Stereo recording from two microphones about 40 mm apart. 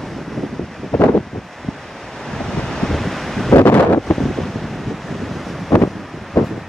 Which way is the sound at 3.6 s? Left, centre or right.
Left.